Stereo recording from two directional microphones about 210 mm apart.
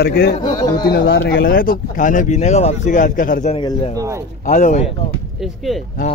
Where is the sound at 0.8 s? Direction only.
50° left (ahead or behind).